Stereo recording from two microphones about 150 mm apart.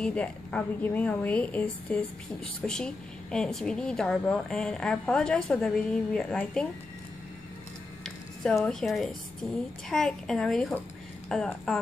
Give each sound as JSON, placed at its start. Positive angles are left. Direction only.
{"t": 0.0, "sound": "a woman's voice", "side_deg": 10}
{"t": 8.0, "sound": "a sound", "side_deg": 5}
{"t": 9.8, "sound": "a woman's voice", "side_deg": 5}